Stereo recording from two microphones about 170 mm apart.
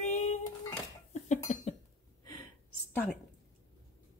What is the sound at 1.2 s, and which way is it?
Cough, 35° left (ahead or behind).